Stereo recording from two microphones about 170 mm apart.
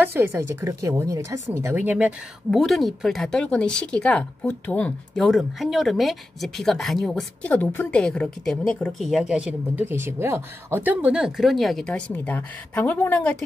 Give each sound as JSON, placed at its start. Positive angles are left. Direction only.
{"t": 0.0, "sound": "a woman's voice", "side_deg": -15}